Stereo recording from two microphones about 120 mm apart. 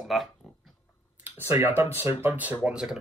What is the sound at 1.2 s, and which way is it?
Speech, 15° right (ahead or behind).